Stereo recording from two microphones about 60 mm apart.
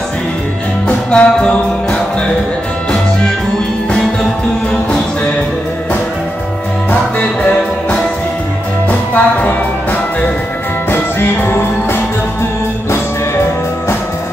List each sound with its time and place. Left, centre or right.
0.8 s music: centre
9.1 s music: left
10.9 s music: left